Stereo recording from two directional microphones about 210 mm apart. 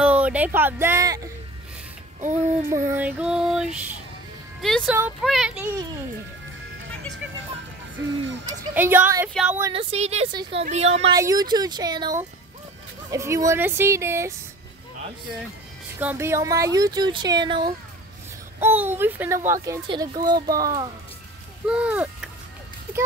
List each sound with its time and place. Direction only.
0.0 s speech: 5° right (ahead or behind)
2.2 s speech: 35° right (ahead or behind)
2.7 s female singing: 10° right (ahead or behind)
4.6 s speech: centre (ahead or behind)
5.2 s female singing: centre (ahead or behind)
8.5 s a child's voice: 10° right (ahead or behind)
9.3 s female singing: centre (ahead or behind)
9.8 s speech: 30° right (ahead or behind)
11.1 s a child's voice: 15° right (ahead or behind)
16.0 s a child's voice: 10° right (ahead or behind)
18.6 s a child's voice: 10° right (ahead or behind)
20.4 s speech: 45° right (ahead or behind)
21.6 s female singing: 5° right (ahead or behind)